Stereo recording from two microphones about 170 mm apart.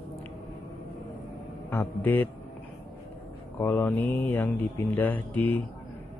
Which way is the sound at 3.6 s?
10° left (ahead or behind).